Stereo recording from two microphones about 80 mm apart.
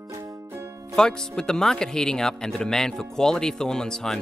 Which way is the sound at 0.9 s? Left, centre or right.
Centre.